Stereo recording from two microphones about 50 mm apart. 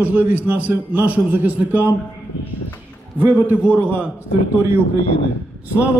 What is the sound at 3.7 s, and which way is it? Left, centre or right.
Speech, right.